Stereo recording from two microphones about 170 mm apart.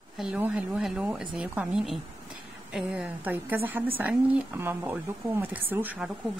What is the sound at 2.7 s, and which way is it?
A woman's voice, 5° right (ahead or behind).